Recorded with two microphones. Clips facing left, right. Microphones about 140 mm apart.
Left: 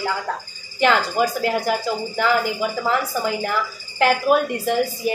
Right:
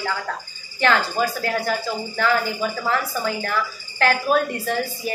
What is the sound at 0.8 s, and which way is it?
A woman's voice, 15° left (ahead or behind).